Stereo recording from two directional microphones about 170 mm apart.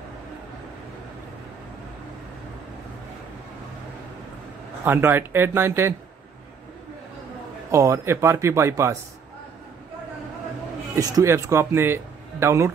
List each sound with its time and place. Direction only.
4.8 s speech: 10° right (ahead or behind)
7.7 s speech: 15° right (ahead or behind)
11.0 s speech: 20° right (ahead or behind)